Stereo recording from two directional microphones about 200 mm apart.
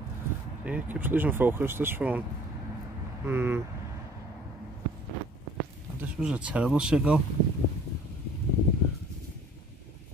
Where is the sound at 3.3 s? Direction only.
10° right (ahead or behind).